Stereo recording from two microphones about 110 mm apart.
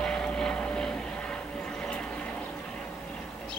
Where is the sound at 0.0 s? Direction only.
5° left (ahead or behind).